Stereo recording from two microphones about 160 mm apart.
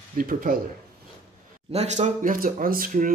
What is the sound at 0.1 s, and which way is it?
Speech, 60° right (ahead or behind).